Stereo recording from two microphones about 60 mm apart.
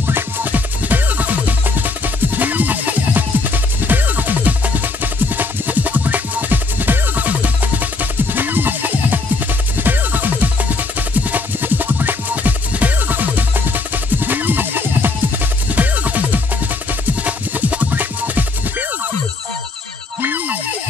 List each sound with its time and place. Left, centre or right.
0.0 s music: right
20.2 s music: right